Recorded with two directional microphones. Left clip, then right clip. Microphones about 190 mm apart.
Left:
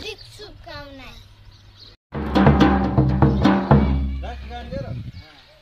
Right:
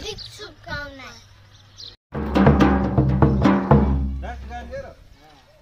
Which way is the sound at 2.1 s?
40° left (ahead or behind).